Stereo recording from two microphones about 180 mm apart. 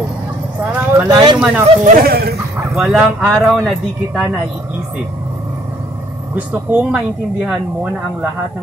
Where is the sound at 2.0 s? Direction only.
60° right (ahead or behind).